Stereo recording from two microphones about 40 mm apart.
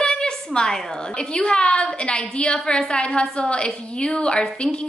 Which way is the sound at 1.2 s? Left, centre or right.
Centre.